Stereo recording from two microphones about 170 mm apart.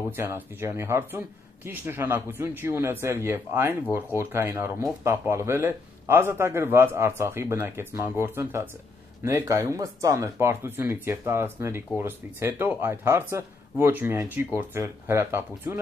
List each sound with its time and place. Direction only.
0.1 s speech: 15° right (ahead or behind)